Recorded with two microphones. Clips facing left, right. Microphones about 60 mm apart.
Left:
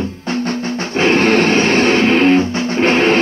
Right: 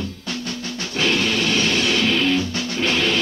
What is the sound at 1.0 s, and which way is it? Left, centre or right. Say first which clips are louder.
Music: left 8 dB; left.